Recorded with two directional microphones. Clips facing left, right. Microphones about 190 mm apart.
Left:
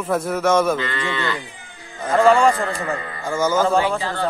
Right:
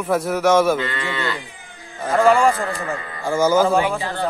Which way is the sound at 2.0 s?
Centre (ahead or behind).